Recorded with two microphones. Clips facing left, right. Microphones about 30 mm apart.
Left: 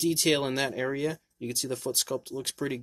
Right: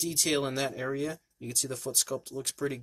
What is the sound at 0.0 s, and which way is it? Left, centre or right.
Speech, centre.